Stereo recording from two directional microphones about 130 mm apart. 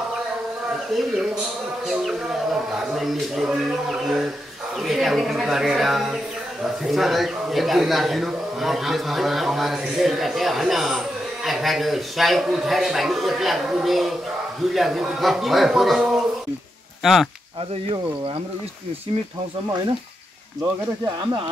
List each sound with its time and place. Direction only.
0.9 s speech: centre (ahead or behind)
2.8 s speech: centre (ahead or behind)
17.8 s speech: 45° right (ahead or behind)